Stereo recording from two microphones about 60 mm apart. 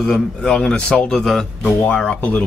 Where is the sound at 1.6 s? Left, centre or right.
Left.